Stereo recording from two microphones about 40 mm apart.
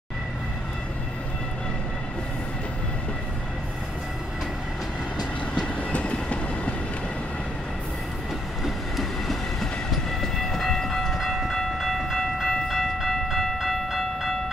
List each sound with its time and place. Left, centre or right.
5.9 s train: left
8.6 s train: centre